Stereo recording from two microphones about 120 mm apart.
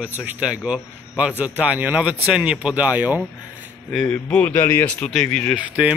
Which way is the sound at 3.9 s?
5° left (ahead or behind).